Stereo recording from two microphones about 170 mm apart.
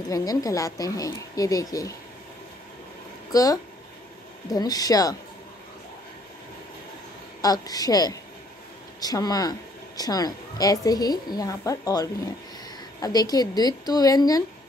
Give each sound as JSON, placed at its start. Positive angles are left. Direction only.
{"t": 0.1, "sound": "a woman's voice", "side_deg": 20}
{"t": 3.3, "sound": "a woman's voice", "side_deg": 20}
{"t": 7.4, "sound": "a woman's voice", "side_deg": 20}